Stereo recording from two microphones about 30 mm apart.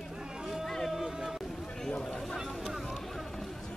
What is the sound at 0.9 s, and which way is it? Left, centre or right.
Boat, centre.